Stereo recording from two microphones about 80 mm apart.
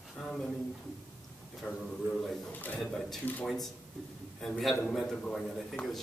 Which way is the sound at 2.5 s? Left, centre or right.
Left.